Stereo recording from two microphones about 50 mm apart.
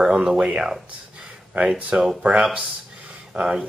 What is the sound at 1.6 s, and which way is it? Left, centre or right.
Speech, right.